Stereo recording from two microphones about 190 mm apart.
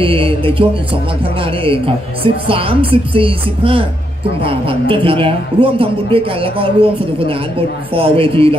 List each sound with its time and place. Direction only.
0.0 s a man's voice: 30° right (ahead or behind)